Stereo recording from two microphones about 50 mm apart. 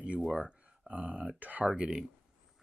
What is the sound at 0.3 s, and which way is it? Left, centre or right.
Speech, right.